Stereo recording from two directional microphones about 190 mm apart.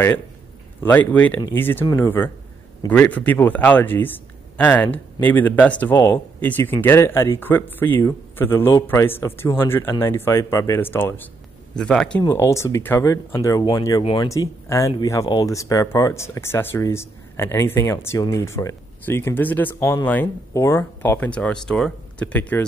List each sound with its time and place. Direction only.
0.8 s speech: 10° left (ahead or behind)
12.2 s speech: 15° left (ahead or behind)